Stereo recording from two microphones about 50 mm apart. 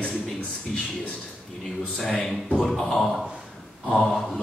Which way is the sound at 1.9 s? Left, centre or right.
Centre.